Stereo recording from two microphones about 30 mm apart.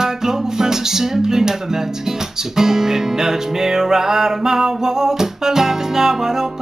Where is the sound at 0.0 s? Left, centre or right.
Centre.